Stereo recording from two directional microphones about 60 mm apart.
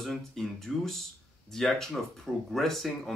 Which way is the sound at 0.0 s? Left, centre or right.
Centre.